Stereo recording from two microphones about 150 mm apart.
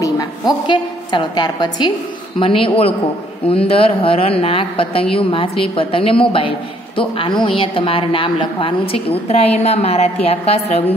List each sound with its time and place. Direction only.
0.7 s a woman's voice: 30° left (ahead or behind)